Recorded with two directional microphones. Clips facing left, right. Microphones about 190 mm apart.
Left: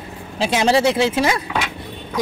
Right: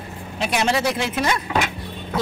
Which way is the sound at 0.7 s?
30° left (ahead or behind).